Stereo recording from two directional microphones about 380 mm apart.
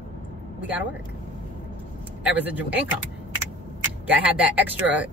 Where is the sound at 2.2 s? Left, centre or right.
Centre.